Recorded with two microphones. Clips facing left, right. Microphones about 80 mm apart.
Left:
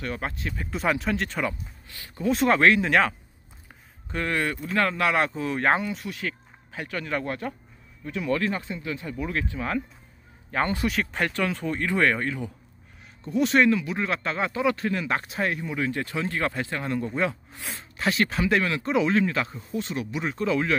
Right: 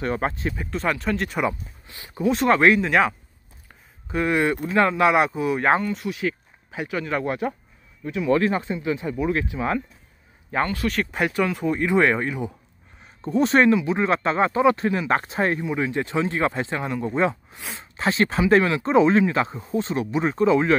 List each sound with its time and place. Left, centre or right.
0.0 s speech: right
0.7 s speech: centre
1.4 s speech: right
2.2 s speech: centre
5.8 s speech: centre
6.0 s speech: centre
8.3 s speech: right
13.0 s speech: right
13.7 s speech: right
15.0 s speech: right
15.7 s speech: right
17.1 s speech: right
20.4 s speech: right